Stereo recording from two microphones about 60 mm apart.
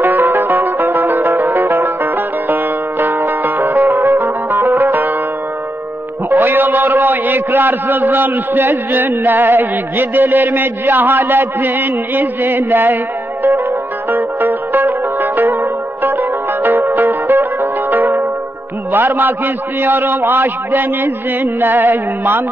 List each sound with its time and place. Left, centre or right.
0.0 s music: right
6.3 s a man's voice: right
14.1 s zither: right
17.9 s music: right
18.9 s a man's voice: right